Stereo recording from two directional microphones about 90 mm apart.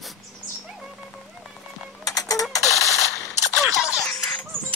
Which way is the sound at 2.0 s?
40° left (ahead or behind).